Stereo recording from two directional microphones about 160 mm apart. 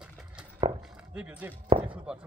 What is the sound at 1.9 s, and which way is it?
Speech, 5° right (ahead or behind).